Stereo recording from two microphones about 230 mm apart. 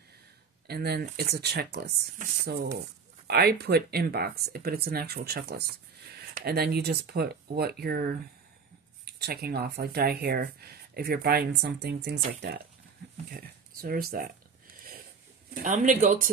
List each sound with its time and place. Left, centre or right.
0.7 s speech: right
13.3 s speech: right
15.6 s speech: right